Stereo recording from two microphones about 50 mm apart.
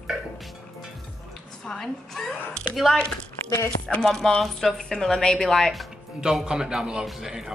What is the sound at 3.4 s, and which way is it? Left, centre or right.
Speech, left.